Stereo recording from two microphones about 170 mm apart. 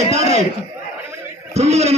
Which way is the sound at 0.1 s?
40° right (ahead or behind).